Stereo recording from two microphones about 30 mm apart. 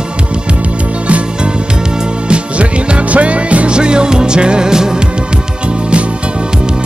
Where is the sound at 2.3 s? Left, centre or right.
Right.